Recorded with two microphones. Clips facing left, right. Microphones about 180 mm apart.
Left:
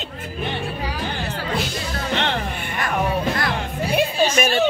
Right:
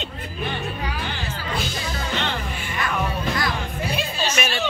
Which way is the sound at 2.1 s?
65° left (ahead or behind).